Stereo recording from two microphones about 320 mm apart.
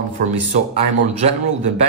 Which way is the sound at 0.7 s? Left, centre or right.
Centre.